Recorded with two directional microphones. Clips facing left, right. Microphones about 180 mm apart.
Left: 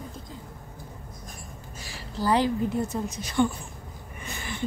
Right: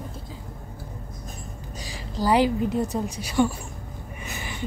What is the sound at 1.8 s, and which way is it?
A woman's voice, 15° right (ahead or behind).